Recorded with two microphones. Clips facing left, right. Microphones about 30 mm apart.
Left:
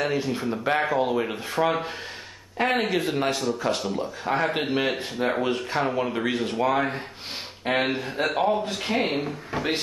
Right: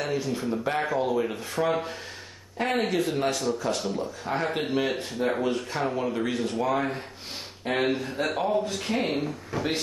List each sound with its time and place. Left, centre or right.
0.0 s speech: centre
3.8 s speech: centre
4.6 s speech: left